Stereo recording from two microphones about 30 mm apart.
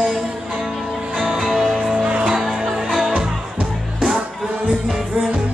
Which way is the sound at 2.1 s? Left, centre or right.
Right.